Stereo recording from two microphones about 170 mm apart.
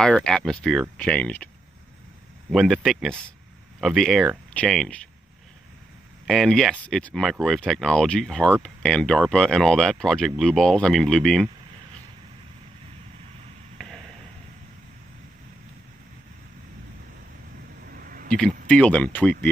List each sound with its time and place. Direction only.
0.0 s speech: 5° left (ahead or behind)
2.5 s speech: centre (ahead or behind)
6.2 s speech: centre (ahead or behind)
13.7 s a sound: 5° left (ahead or behind)
17.8 s a sound: 60° right (ahead or behind)
18.7 s speech: 5° left (ahead or behind)